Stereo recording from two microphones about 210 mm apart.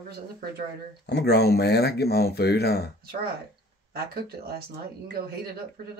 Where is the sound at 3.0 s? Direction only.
45° right (ahead or behind).